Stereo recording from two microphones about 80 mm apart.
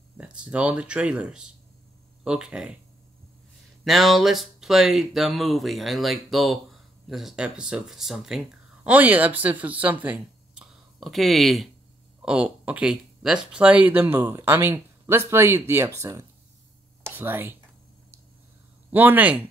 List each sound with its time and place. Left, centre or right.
0.2 s speech: centre
3.8 s speech: centre
8.8 s speech: right
10.1 s a sound: centre
11.0 s speech: centre
12.2 s speech: centre; by 16.3 s right
17.0 s speech: right
18.9 s speech: right